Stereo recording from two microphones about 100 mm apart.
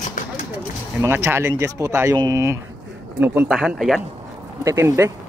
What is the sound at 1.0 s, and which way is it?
Speech, 25° right (ahead or behind).